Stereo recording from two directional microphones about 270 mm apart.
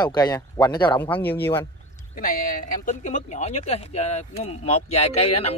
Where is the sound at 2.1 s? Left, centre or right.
Left.